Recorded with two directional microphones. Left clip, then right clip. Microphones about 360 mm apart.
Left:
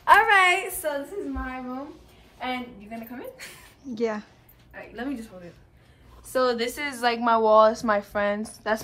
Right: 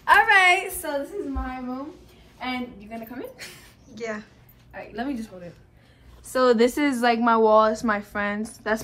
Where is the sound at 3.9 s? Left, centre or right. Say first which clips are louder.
Left 4 dB; centre.